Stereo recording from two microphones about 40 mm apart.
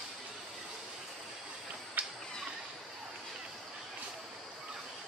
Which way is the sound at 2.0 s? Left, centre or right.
Right.